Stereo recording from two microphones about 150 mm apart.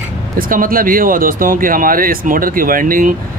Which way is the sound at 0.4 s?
70° right (ahead or behind).